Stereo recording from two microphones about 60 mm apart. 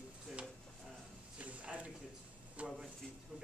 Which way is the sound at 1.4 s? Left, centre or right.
Right.